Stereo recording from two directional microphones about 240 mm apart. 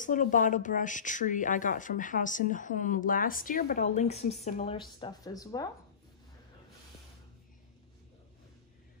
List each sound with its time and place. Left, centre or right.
0.0 s a woman's voice: left; by 5.7 s centre